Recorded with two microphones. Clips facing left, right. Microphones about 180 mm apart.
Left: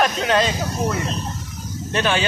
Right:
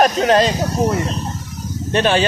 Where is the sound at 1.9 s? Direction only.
35° right (ahead or behind).